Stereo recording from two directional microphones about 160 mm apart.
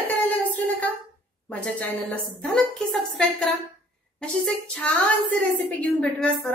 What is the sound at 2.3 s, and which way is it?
Speech, 5° left (ahead or behind).